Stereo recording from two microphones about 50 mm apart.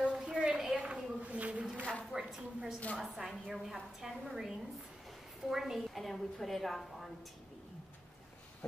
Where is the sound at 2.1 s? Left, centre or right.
Centre.